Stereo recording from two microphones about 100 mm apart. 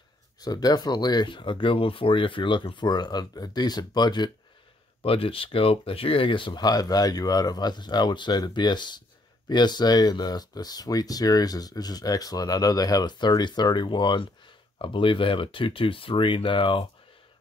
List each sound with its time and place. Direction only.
0.4 s speech: 40° left (ahead or behind)
5.0 s speech: 65° left (ahead or behind)